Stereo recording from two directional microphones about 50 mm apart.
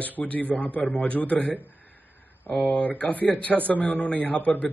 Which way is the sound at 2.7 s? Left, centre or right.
Left.